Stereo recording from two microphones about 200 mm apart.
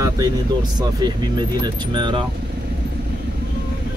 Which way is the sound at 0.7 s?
20° right (ahead or behind).